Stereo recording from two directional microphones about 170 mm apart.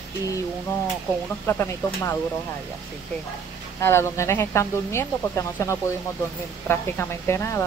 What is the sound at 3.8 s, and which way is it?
Speech, 15° left (ahead or behind).